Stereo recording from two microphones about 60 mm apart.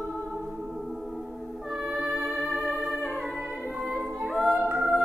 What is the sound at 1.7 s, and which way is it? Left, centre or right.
Music, centre.